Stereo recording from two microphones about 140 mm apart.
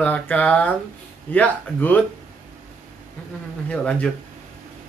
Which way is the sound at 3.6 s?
10° left (ahead or behind).